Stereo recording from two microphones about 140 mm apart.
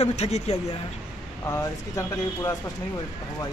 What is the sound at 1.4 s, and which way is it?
Speech, 20° left (ahead or behind).